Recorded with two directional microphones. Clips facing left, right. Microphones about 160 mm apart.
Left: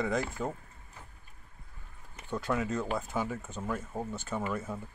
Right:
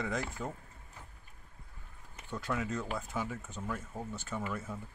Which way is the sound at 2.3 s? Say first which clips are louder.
Left 4 dB; 40° left (ahead or behind).